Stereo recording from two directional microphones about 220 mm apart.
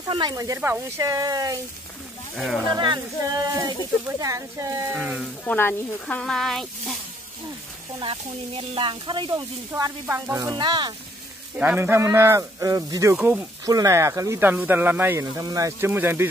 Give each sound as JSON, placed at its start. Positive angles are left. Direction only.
{"t": 0.1, "sound": "speech", "side_deg": -20}
{"t": 2.3, "sound": "speech", "side_deg": 0}
{"t": 2.7, "sound": "speech", "side_deg": -20}
{"t": 4.9, "sound": "speech", "side_deg": 0}
{"t": 5.4, "sound": "speech", "side_deg": 10}
{"t": 8.0, "sound": "speech", "side_deg": -25}
{"t": 11.5, "sound": "speech", "side_deg": -10}